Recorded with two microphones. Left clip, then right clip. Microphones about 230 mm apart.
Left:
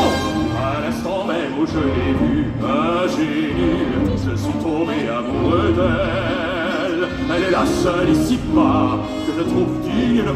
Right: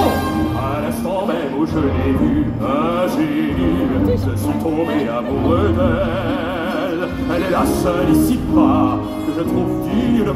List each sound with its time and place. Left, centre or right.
7.5 s music: right